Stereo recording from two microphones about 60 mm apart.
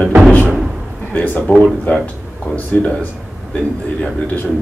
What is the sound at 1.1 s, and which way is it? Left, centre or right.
A man's voice, left.